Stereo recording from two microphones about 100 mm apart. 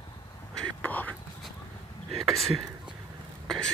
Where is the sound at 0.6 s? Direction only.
15° left (ahead or behind).